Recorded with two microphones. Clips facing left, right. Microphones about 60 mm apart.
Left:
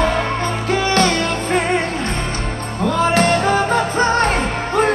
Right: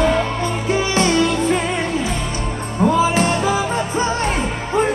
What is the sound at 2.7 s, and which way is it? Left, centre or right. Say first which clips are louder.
Music: right 2 dB; centre.